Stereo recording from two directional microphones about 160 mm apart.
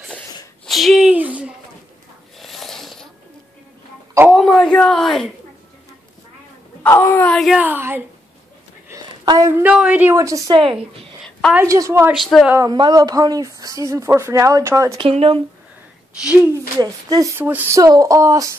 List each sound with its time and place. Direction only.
0.7 s a sound: centre (ahead or behind)
4.3 s a sound: centre (ahead or behind)
6.8 s speech: 15° left (ahead or behind)
7.3 s a woman's voice: centre (ahead or behind)
7.6 s a woman's voice: 10° right (ahead or behind)
8.8 s a sound: 25° right (ahead or behind)
9.6 s a woman's voice: 10° right (ahead or behind)
10.6 s a woman's voice: 30° right (ahead or behind)
11.5 s speech: 20° right (ahead or behind)
12.1 s a woman's voice: centre (ahead or behind)
12.4 s speech: 20° right (ahead or behind)
15.0 s a woman's voice: 35° right (ahead or behind)
16.8 s speech: 25° right (ahead or behind)
17.4 s a woman's voice: 10° right (ahead or behind)